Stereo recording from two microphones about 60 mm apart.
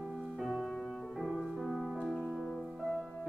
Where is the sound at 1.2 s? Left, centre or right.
Centre.